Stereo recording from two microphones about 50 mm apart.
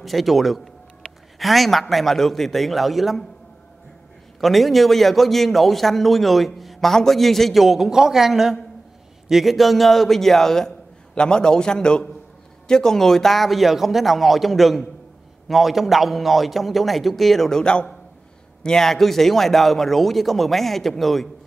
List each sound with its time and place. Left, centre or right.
0.0 s a man's voice: centre
4.4 s a man's voice: centre